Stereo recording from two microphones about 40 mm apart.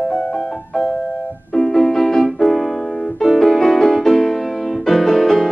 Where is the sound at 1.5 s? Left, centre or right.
Centre.